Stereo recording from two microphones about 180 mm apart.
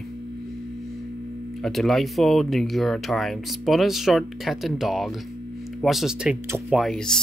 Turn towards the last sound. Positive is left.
turn(degrees=0)  # may be behind; listen again after turning